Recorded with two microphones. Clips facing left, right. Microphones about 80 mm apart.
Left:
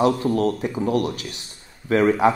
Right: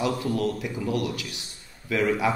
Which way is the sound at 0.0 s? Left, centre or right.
Left.